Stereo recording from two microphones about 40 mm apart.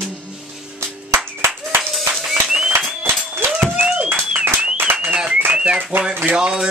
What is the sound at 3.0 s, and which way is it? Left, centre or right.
Applause, right.